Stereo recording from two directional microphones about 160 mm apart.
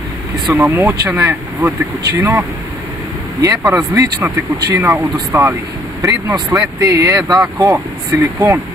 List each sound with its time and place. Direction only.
0.7 s speech: 15° right (ahead or behind)